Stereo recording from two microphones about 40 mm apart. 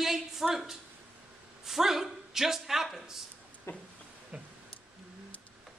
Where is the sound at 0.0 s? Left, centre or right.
Centre.